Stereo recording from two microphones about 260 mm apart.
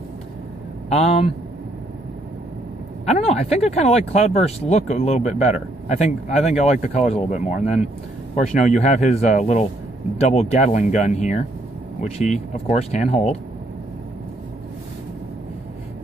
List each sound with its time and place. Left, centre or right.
0.8 s speech: left
3.1 s speech: left